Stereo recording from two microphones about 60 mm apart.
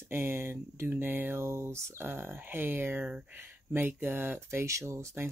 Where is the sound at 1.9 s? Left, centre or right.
Right.